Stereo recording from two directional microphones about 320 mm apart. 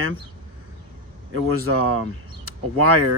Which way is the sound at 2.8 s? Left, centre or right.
Right.